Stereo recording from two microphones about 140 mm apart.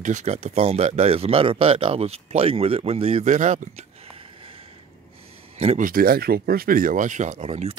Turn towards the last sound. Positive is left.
turn(degrees=-50)  # may be behind; listen again after turning